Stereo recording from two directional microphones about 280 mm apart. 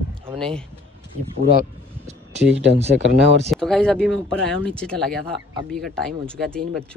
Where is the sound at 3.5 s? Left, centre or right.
Centre.